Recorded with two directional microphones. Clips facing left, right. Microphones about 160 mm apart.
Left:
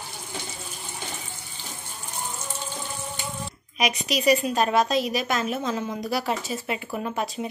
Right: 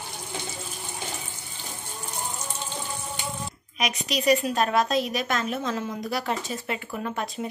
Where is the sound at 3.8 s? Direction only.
5° left (ahead or behind).